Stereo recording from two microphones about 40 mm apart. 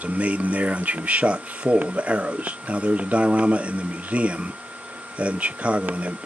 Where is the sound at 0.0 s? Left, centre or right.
Right.